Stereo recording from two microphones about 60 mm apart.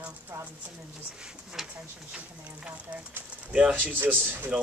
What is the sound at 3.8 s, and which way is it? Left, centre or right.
Speech, right.